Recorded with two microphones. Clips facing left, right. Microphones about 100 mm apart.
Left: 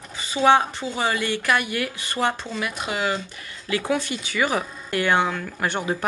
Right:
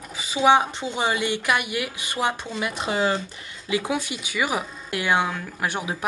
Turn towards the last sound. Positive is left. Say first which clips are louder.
# left 3 dB
turn(degrees=-5)  # may be behind; listen again after turning